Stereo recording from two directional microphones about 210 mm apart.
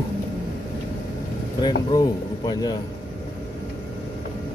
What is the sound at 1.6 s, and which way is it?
A man's voice, 20° left (ahead or behind).